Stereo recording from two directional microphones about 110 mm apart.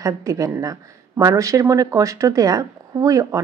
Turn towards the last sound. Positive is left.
turn(degrees=-30)  # may be behind; listen again after turning